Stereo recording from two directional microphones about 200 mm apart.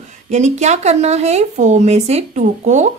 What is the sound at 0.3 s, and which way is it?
Speech, 35° right (ahead or behind).